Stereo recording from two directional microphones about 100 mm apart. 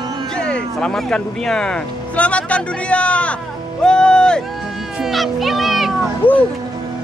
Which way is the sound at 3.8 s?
10° left (ahead or behind).